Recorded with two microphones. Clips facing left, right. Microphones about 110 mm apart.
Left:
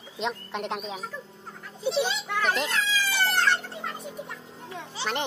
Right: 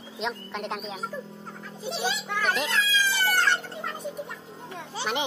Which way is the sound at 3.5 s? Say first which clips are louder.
Even; centre (ahead or behind).